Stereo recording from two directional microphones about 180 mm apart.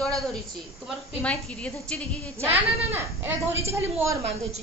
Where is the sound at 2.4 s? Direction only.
10° right (ahead or behind).